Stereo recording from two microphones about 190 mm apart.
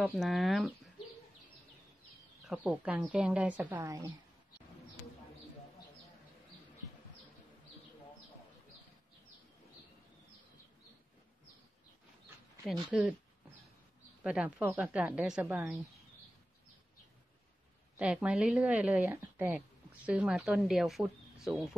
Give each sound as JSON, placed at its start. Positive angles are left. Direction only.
{"t": 0.0, "sound": "speech", "side_deg": 0}
{"t": 2.4, "sound": "a woman's voice", "side_deg": -10}
{"t": 12.9, "sound": "speech", "side_deg": 0}
{"t": 14.2, "sound": "a woman's voice", "side_deg": -5}
{"t": 17.9, "sound": "a woman's voice", "side_deg": -5}